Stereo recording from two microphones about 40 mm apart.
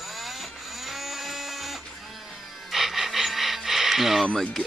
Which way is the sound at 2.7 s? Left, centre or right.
Centre.